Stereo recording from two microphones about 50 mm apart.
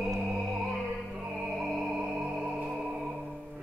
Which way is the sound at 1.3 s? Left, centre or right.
Centre.